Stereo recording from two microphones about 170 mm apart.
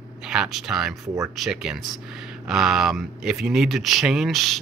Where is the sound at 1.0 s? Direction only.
20° right (ahead or behind).